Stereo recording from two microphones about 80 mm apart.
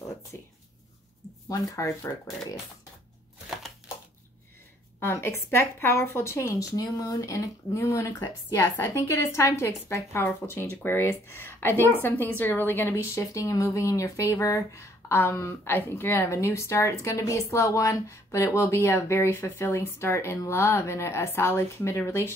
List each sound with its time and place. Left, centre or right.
0.3 s speech: left
1.5 s speech: left
5.0 s speech: left
6.8 s a woman's voice: left
13.0 s speech: left